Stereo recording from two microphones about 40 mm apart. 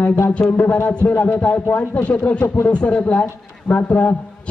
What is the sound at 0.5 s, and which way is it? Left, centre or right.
Speech, left.